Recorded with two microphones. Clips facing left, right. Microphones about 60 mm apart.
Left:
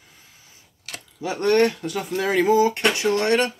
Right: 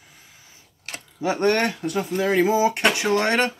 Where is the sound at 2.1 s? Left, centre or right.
Centre; by 3.5 s right.